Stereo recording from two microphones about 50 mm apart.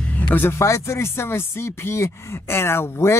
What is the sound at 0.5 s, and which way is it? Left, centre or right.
A woman's voice, left.